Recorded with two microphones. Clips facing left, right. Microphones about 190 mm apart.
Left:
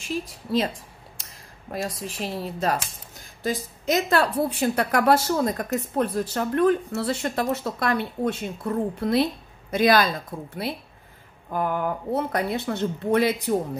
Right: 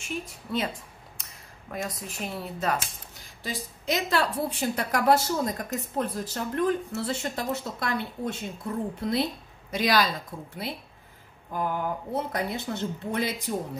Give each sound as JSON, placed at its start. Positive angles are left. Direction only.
{"t": 0.1, "sound": "a woman's voice", "side_deg": 35}
{"t": 1.7, "sound": "a woman's voice", "side_deg": 35}
{"t": 3.4, "sound": "speech", "side_deg": 45}
{"t": 9.7, "sound": "a woman's voice", "side_deg": 55}
{"t": 11.5, "sound": "speech", "side_deg": 60}